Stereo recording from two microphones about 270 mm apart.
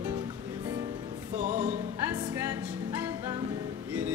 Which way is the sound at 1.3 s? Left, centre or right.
Right.